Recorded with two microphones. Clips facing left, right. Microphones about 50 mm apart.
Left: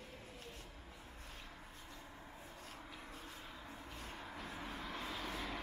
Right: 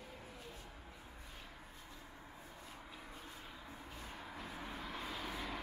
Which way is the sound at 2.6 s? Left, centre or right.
Centre.